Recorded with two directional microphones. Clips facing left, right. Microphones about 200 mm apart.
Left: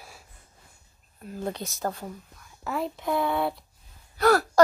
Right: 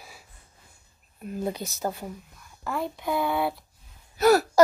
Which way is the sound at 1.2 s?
15° right (ahead or behind).